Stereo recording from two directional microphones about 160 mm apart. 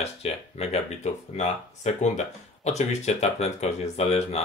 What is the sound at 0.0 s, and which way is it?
Speech, 40° left (ahead or behind).